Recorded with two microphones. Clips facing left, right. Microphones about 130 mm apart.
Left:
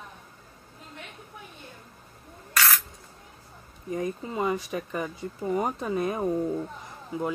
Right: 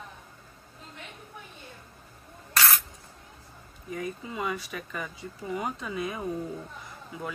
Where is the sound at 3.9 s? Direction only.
35° left (ahead or behind).